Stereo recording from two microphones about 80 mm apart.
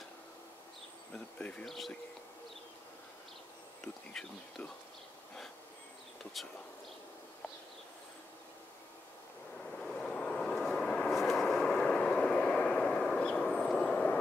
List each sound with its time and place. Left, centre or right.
1.1 s speech: centre
1.7 s speech: centre
3.8 s speech: centre
6.4 s speech: centre
9.6 s vehicle: centre